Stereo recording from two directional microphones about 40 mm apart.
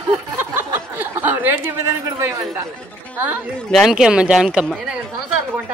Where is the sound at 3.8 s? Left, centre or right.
Centre.